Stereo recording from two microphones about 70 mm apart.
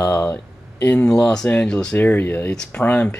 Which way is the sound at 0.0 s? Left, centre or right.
Left.